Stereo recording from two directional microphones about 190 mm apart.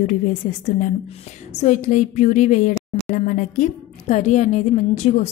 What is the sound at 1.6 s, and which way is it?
A woman's voice, 40° left (ahead or behind).